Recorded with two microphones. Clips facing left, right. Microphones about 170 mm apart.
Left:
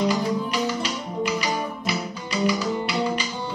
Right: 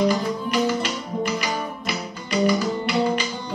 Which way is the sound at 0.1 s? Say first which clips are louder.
Right 1 dB; 50° right (ahead or behind).